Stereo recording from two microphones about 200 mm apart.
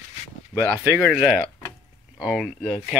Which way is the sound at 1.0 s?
5° right (ahead or behind).